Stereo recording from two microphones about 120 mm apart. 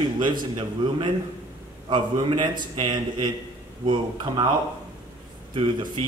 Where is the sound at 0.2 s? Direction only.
40° right (ahead or behind).